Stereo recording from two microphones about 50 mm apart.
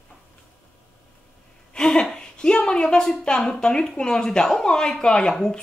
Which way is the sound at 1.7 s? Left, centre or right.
Centre.